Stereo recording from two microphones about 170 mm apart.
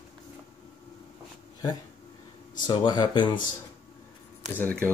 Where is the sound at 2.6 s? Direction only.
25° left (ahead or behind).